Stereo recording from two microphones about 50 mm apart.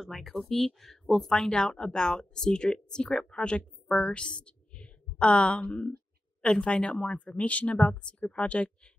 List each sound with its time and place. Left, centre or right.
0.0 s speech: centre; by 8.7 s left